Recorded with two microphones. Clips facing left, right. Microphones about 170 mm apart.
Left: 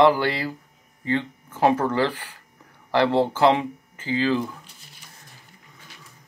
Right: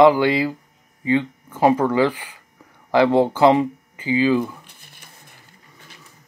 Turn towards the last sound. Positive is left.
turn(degrees=-55)  # may be behind; listen again after turning